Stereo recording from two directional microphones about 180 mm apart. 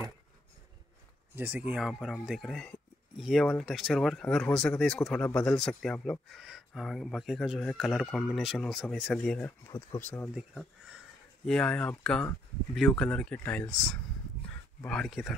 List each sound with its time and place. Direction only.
1.3 s speech: 10° right (ahead or behind)
9.7 s speech: 15° left (ahead or behind)
10.3 s speech: centre (ahead or behind)
14.9 s speech: centre (ahead or behind)